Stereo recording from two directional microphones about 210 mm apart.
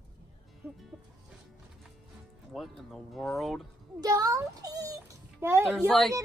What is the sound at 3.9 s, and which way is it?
A child's voice, 15° right (ahead or behind).